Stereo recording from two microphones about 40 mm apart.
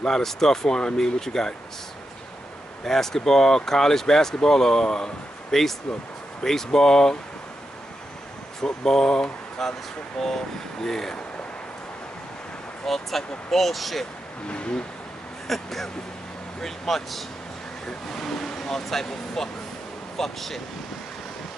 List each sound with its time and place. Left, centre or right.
0.0 s speech: centre
2.8 s speech: centre
5.5 s speech: centre
8.5 s speech: centre
9.6 s speech: centre
12.8 s speech: centre
14.5 s speech: left
15.4 s speech: centre